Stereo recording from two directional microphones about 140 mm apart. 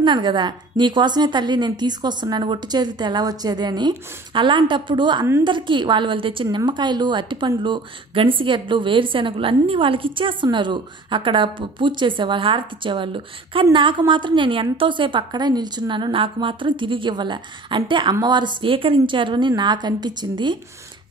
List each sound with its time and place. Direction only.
0.0 s a woman's voice: 35° right (ahead or behind)